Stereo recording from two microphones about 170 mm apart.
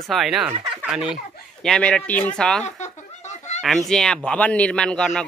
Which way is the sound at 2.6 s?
45° left (ahead or behind).